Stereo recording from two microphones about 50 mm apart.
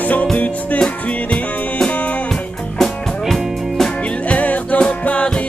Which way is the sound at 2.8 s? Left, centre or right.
Centre.